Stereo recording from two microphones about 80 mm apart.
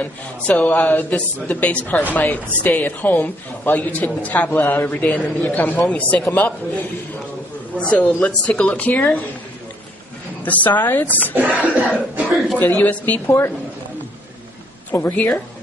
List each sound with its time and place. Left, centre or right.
0.0 s a woman's voice: centre
10.4 s a woman's voice: left
11.6 s music: centre
12.3 s a sound: centre
12.5 s a woman's voice: left
14.9 s a woman's voice: left